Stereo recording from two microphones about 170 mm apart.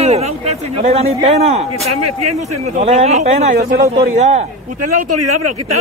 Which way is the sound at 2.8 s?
40° right (ahead or behind).